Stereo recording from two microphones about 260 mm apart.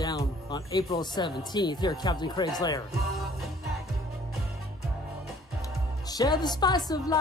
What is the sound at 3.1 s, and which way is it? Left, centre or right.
Music, centre.